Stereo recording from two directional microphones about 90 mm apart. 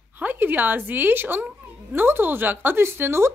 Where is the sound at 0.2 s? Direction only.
20° right (ahead or behind).